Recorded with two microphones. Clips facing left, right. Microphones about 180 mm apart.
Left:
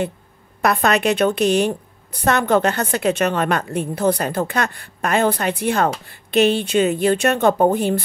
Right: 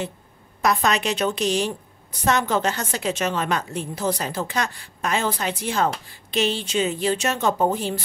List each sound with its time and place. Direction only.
0.6 s a woman's voice: 60° left (ahead or behind)